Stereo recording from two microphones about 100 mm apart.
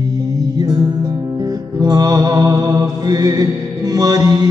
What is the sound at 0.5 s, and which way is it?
Music, 45° right (ahead or behind).